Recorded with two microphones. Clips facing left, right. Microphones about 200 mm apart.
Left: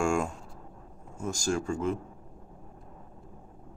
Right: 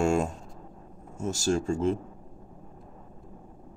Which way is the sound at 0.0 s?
25° right (ahead or behind).